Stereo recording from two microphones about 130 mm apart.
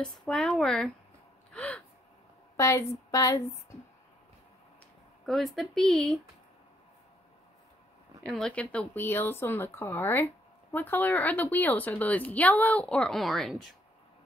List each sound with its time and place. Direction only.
0.0 s speech: 5° left (ahead or behind)
1.5 s gasp: 10° left (ahead or behind)
2.5 s a woman's voice: 20° left (ahead or behind)
5.2 s speech: centre (ahead or behind)
8.3 s speech: 5° left (ahead or behind)